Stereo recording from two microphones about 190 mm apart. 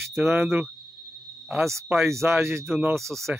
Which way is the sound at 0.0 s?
10° right (ahead or behind).